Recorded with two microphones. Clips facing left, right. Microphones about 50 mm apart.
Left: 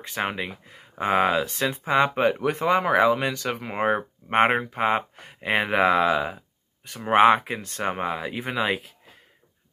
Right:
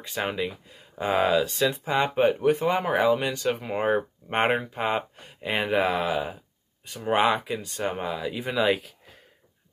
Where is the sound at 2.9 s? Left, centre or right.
Left.